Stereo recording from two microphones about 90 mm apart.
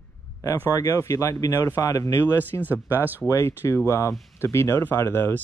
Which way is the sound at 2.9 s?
20° right (ahead or behind).